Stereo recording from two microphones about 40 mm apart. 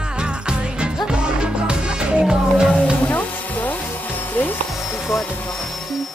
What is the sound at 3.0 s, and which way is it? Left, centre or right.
Music, left.